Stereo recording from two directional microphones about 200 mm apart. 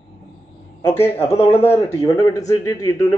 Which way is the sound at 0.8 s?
10° left (ahead or behind).